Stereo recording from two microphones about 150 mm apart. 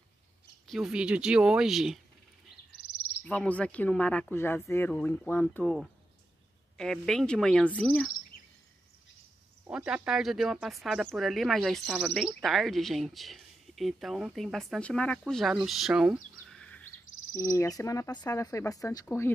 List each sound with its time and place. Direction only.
0.7 s speech: 5° right (ahead or behind)
3.3 s speech: 10° left (ahead or behind)
9.7 s speech: 5° right (ahead or behind)
17.3 s speech: 25° left (ahead or behind)